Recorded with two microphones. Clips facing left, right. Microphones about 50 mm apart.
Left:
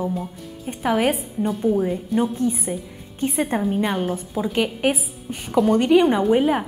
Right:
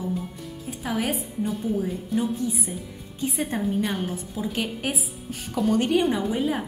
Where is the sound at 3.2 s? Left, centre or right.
Left.